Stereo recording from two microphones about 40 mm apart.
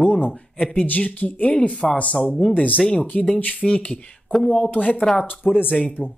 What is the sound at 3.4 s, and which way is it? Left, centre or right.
Speech, left.